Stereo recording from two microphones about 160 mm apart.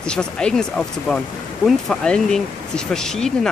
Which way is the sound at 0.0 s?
5° left (ahead or behind).